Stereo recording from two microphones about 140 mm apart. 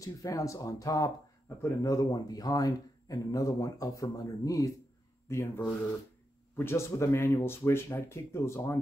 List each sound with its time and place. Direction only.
0.0 s speech: 25° left (ahead or behind)